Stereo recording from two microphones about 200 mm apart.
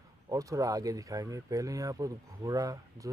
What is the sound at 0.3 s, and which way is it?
Speech, 15° right (ahead or behind).